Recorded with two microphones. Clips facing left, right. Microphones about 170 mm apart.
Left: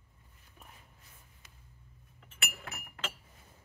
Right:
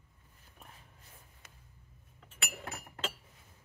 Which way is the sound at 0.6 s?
Centre (ahead or behind).